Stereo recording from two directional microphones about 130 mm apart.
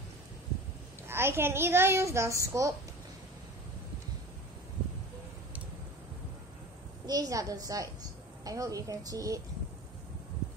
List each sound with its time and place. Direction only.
1.0 s a woman's voice: 20° right (ahead or behind)
7.1 s a woman's voice: 30° right (ahead or behind)